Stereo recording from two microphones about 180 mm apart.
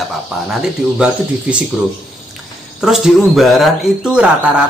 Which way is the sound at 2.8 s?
Centre (ahead or behind).